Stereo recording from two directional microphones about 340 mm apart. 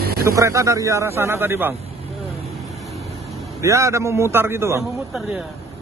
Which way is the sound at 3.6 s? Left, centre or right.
Centre.